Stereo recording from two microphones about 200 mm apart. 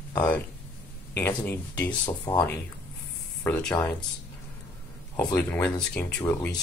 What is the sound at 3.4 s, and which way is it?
Speech, 5° left (ahead or behind).